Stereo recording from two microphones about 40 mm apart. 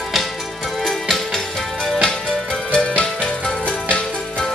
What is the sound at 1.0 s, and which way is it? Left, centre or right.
Music, centre.